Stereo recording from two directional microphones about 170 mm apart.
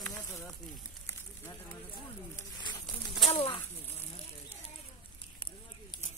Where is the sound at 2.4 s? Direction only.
25° left (ahead or behind).